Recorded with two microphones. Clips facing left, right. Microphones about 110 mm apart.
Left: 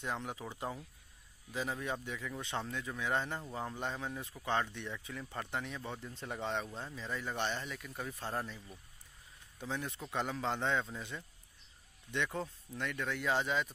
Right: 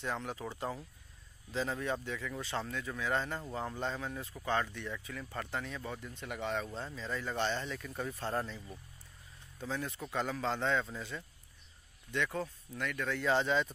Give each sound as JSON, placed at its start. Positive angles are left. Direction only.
{"t": 0.0, "sound": "speech", "side_deg": 15}
{"t": 9.6, "sound": "speech", "side_deg": 15}